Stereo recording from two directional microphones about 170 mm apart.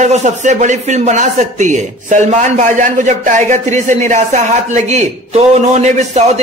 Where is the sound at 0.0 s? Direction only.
45° right (ahead or behind).